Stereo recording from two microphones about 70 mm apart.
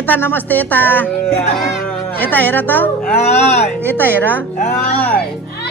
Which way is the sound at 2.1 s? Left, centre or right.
Left.